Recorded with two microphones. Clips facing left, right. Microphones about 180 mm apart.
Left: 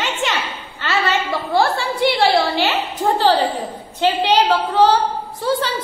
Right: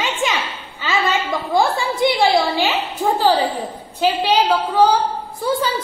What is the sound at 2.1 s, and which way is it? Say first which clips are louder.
A woman's voice: even; 15° right (ahead or behind).